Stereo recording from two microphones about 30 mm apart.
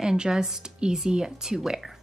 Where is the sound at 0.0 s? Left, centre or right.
Right.